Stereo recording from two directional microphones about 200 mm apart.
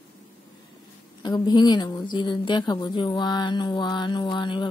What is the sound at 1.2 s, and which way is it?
Speech, 20° left (ahead or behind).